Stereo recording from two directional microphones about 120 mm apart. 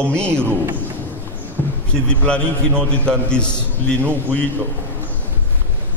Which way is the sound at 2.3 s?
10° left (ahead or behind).